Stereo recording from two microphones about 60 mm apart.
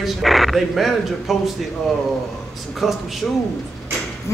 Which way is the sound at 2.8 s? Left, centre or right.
Centre.